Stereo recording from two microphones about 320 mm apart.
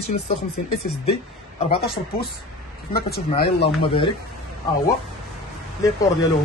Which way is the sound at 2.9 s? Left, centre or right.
Left.